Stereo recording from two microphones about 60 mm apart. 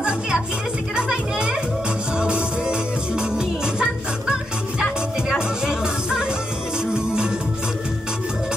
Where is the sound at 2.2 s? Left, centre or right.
Centre.